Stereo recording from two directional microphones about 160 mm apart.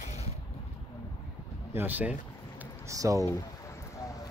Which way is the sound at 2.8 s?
20° right (ahead or behind).